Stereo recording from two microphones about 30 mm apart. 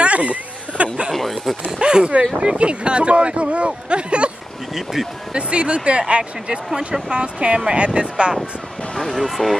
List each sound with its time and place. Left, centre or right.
0.0 s a sound: right
1.1 s speech: centre
1.8 s speech: right
5.3 s speech: right
9.1 s speech: centre